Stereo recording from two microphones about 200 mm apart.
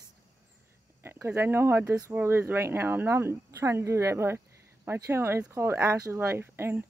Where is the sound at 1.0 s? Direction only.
15° right (ahead or behind).